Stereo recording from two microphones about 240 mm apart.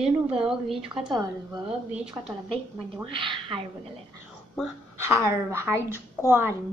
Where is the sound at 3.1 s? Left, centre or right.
Right.